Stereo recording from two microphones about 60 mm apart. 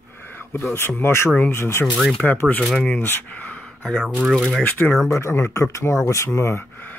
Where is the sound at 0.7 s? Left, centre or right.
Left.